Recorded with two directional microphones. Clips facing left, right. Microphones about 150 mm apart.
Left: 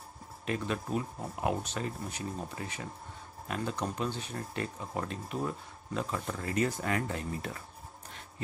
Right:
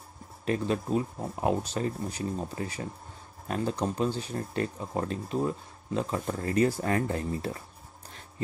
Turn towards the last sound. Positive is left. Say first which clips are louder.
# right 5 dB
turn(degrees=-35)  # may be behind; listen again after turning